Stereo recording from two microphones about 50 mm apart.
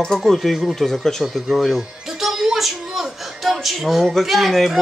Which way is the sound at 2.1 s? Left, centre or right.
Centre.